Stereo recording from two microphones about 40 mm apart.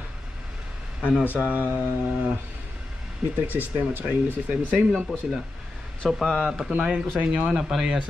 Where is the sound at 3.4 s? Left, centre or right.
Right.